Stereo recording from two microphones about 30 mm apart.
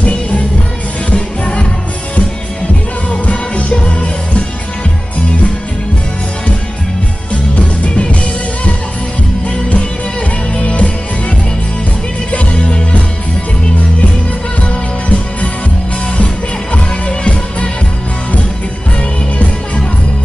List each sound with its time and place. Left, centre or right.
1.1 s music: left
3.1 s music: left
7.5 s music: left
10.5 s music: left
14.6 s music: left
16.7 s music: left
19.3 s music: left